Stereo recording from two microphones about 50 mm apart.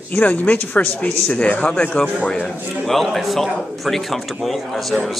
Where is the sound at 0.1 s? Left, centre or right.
Left.